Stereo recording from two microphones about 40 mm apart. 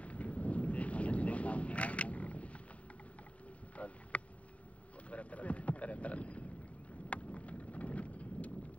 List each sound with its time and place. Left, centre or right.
0.0 s wind noise: left
3.7 s a sound: left
5.1 s boat: left
7.1 s vehicle: left